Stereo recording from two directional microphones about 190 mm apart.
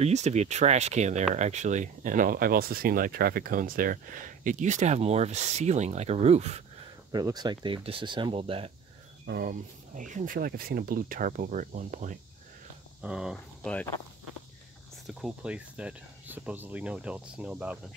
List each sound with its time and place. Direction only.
0.0 s speech: 35° right (ahead or behind)
7.1 s speech: 20° right (ahead or behind)
9.2 s speech: 55° right (ahead or behind)
13.0 s speech: 5° right (ahead or behind)
15.0 s speech: centre (ahead or behind)